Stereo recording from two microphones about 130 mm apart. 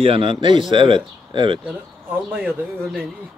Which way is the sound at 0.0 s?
45° right (ahead or behind).